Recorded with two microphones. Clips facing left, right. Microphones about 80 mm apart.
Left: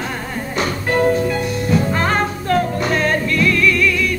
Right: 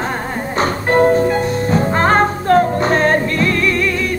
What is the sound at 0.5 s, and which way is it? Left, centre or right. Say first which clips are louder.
Music: right 4 dB; right.